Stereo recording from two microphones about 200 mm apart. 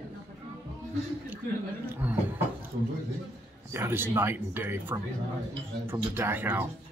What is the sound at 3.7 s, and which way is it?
Speech, 10° right (ahead or behind).